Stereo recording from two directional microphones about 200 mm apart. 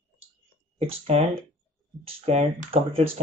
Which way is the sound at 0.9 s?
30° right (ahead or behind).